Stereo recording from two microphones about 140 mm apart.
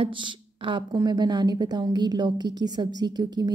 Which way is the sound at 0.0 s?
35° right (ahead or behind).